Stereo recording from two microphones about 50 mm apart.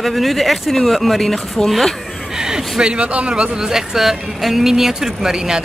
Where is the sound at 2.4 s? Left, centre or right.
Centre.